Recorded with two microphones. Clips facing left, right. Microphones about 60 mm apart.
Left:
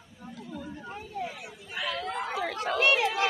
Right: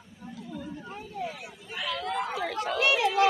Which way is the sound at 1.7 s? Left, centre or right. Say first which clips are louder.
Right 1 dB; centre.